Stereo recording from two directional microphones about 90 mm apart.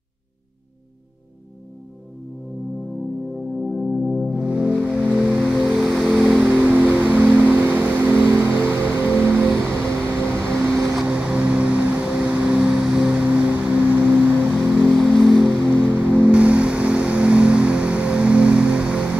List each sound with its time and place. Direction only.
3.6 s music: centre (ahead or behind)
4.4 s music: 10° right (ahead or behind)
5.3 s vehicle: 5° right (ahead or behind)
5.8 s a sound: 5° right (ahead or behind); by 9.5 s 20° right (ahead or behind)
10.0 s vehicle: 25° right (ahead or behind)
11.0 s music: 10° right (ahead or behind)
14.9 s music: centre (ahead or behind)
15.6 s music: 20° right (ahead or behind)